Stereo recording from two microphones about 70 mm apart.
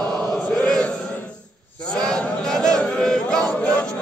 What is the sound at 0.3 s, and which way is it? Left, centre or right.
Chant, centre.